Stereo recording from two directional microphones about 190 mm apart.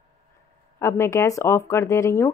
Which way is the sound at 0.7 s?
15° left (ahead or behind).